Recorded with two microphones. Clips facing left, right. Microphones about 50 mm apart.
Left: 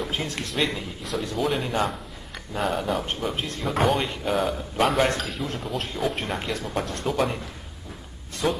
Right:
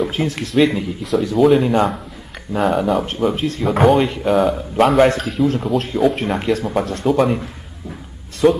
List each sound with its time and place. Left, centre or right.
0.0 s speech: centre
3.0 s speech: centre
3.5 s speech: centre
8.4 s speech: centre